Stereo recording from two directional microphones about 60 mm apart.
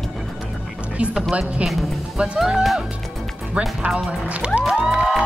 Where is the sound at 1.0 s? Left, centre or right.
Right.